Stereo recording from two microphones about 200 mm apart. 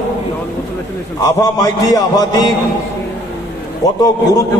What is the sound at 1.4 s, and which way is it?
A man's voice, 20° left (ahead or behind).